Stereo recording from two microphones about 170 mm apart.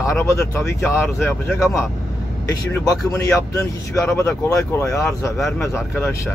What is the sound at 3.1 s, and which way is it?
Speech, 15° left (ahead or behind).